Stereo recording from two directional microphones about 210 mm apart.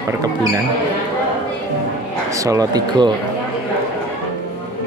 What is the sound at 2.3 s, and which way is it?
Speech, 15° right (ahead or behind).